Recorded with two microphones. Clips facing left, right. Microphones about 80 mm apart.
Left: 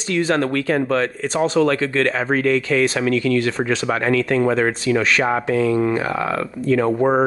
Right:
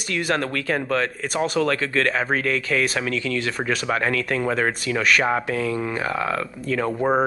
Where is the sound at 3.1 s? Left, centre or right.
Left.